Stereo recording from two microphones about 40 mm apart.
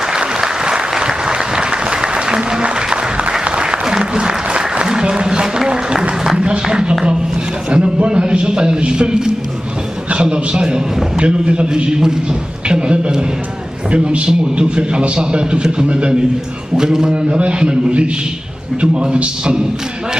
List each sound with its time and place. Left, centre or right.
0.1 s applause: centre
6.3 s a man's voice: right